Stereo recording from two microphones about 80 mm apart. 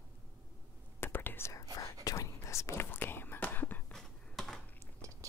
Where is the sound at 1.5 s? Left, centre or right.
Left.